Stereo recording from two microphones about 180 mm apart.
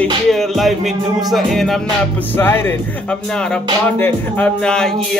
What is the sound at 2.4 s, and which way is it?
Music, 10° left (ahead or behind).